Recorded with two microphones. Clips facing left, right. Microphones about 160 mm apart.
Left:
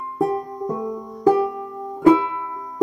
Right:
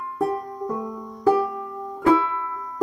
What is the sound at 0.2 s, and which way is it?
Music, 20° left (ahead or behind).